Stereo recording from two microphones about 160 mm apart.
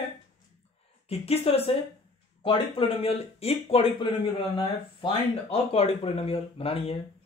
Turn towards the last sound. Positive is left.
turn(degrees=35)  # may be behind; listen again after turning